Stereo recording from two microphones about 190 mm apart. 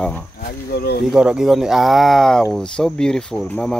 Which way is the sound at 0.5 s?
55° left (ahead or behind).